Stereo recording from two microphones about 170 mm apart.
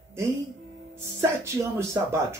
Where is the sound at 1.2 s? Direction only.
15° right (ahead or behind).